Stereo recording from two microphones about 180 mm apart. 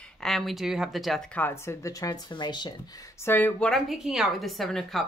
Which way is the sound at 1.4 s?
15° left (ahead or behind).